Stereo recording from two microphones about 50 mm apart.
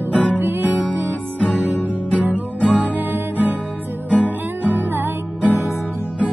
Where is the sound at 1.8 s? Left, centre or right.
Left.